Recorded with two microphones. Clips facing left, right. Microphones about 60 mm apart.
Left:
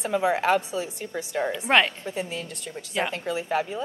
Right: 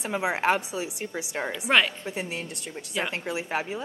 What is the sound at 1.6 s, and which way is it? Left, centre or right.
Speech, centre.